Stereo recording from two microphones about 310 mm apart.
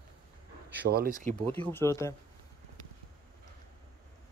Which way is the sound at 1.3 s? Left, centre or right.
Centre.